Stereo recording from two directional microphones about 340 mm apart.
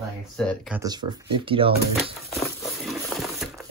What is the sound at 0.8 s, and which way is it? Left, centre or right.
Speech, centre.